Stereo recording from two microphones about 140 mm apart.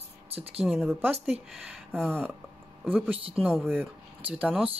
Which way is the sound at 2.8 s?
10° right (ahead or behind).